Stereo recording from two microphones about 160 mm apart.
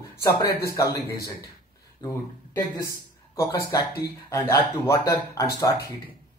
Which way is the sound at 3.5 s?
20° left (ahead or behind).